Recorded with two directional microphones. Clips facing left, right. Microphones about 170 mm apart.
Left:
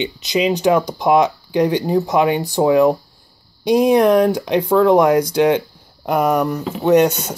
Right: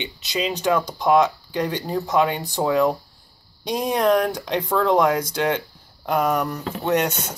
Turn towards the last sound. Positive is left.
turn(degrees=10)  # may be behind; listen again after turning